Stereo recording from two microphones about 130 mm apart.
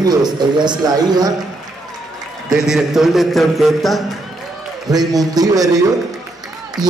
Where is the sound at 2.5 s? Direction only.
5° right (ahead or behind).